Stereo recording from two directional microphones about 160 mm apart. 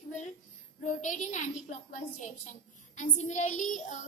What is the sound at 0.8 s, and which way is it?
A woman's voice, 50° left (ahead or behind).